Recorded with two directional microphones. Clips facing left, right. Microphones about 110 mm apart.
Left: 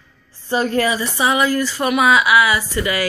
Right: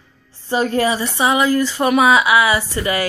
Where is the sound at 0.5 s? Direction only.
25° right (ahead or behind).